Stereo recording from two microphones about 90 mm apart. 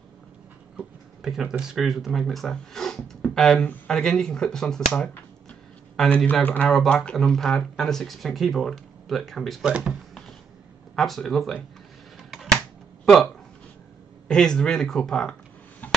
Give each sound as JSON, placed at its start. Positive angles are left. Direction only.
{"t": 0.7, "sound": "speech", "side_deg": -5}
{"t": 6.7, "sound": "speech", "side_deg": 5}
{"t": 9.7, "sound": "speech", "side_deg": -10}
{"t": 11.0, "sound": "speech", "side_deg": 5}
{"t": 12.3, "sound": "a sound", "side_deg": 0}
{"t": 13.0, "sound": "speech", "side_deg": 0}